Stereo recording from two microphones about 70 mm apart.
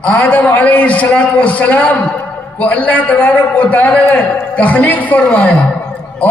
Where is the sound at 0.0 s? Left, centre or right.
Left.